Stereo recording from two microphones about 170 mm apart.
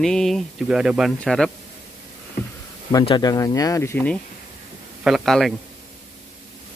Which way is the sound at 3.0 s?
25° left (ahead or behind).